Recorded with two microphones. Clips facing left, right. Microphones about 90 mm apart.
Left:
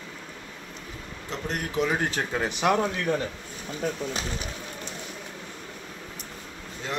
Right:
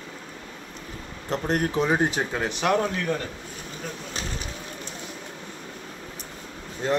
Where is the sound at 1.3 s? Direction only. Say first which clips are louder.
Right 7 dB; 45° right (ahead or behind); by 2.1 s 25° right (ahead or behind).